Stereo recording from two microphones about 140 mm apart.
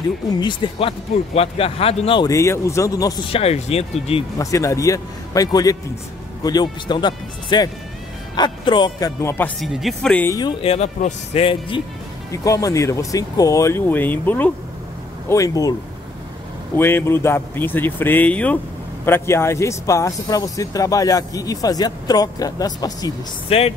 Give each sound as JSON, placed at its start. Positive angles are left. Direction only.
{"t": 0.4, "sound": "speech", "side_deg": 35}
{"t": 2.2, "sound": "speech", "side_deg": 20}
{"t": 3.3, "sound": "speech", "side_deg": 45}
{"t": 4.4, "sound": "speech", "side_deg": 25}
{"t": 9.2, "sound": "speech", "side_deg": 15}
{"t": 9.6, "sound": "speech", "side_deg": 0}
{"t": 10.2, "sound": "speech", "side_deg": 25}
{"t": 10.6, "sound": "speech", "side_deg": 50}
{"t": 12.3, "sound": "speech", "side_deg": 25}
{"t": 15.2, "sound": "speech", "side_deg": 25}
{"t": 16.7, "sound": "speech", "side_deg": 15}
{"t": 23.5, "sound": "speech", "side_deg": 45}